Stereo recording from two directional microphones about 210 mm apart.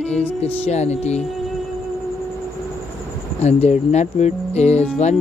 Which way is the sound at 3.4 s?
30° left (ahead or behind).